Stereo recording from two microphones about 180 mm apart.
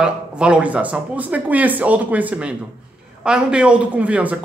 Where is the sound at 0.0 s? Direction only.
5° right (ahead or behind).